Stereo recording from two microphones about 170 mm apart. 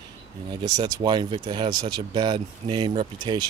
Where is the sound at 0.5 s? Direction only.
25° right (ahead or behind).